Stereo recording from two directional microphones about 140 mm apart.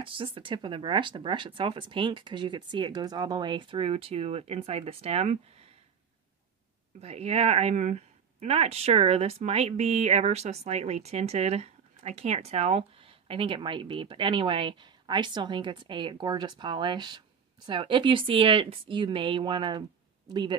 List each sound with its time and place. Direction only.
0.0 s speech: 40° right (ahead or behind)
7.0 s speech: 50° right (ahead or behind); by 20.5 s 30° right (ahead or behind)